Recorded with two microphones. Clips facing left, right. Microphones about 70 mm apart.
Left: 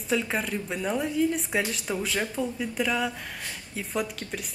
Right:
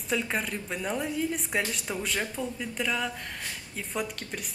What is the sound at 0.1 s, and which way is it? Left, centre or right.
A woman's voice, centre.